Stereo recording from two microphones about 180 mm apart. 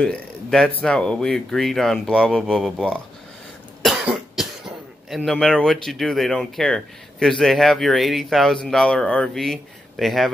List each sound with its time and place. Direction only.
0.0 s speech: 5° left (ahead or behind)